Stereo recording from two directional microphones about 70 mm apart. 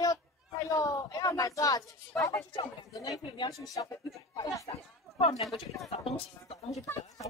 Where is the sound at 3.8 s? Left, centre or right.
Left.